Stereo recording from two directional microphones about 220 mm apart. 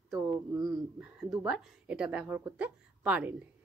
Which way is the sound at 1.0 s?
5° right (ahead or behind).